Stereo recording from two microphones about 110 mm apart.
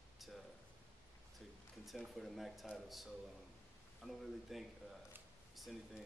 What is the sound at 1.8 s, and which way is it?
A man's voice, centre (ahead or behind).